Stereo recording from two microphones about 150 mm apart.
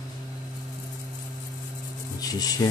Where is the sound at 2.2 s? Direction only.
25° left (ahead or behind).